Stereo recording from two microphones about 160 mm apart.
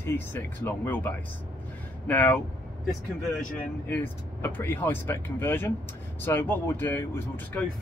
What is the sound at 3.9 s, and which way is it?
Speech, 10° left (ahead or behind).